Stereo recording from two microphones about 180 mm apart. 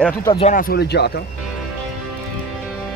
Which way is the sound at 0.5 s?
55° left (ahead or behind).